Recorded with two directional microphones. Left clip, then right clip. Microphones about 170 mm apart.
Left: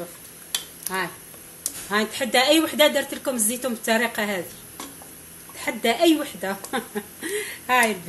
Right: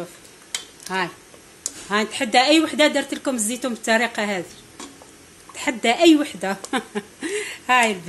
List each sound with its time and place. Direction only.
0.8 s a woman's voice: 35° right (ahead or behind)
5.6 s speech: 35° right (ahead or behind)